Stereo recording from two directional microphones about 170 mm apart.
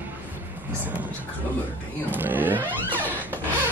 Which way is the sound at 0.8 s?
10° right (ahead or behind).